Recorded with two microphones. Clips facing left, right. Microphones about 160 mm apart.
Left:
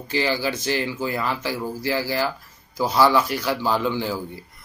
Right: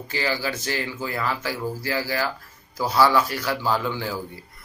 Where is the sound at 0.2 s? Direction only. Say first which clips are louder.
Left 2 dB; 20° left (ahead or behind).